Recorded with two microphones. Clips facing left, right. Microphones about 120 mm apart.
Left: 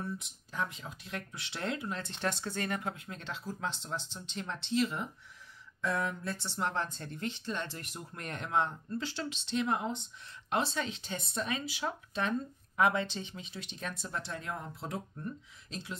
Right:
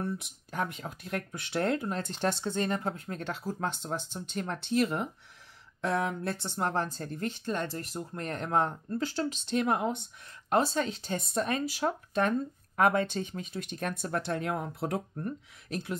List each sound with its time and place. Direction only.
0.0 s speech: 60° right (ahead or behind)
5.8 s speech: 70° right (ahead or behind)
10.5 s speech: 40° right (ahead or behind); by 15.0 s 65° right (ahead or behind)
15.1 s speech: 55° right (ahead or behind)